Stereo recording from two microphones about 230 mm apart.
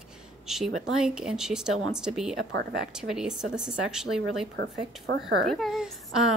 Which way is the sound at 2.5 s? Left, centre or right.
Right.